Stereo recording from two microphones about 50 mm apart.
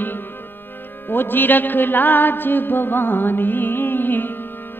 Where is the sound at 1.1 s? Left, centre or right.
Left.